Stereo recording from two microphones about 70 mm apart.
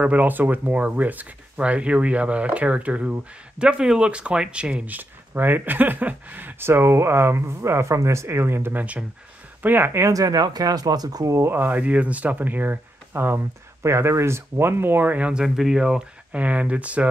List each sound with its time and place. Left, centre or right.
0.0 s speech: right
8.7 s speech: right
10.0 s speech: right
11.4 s speech: right
15.4 s speech: centre